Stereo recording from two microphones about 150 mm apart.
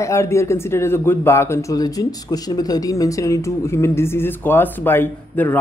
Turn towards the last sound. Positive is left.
turn(degrees=15)  # may be behind; listen again after turning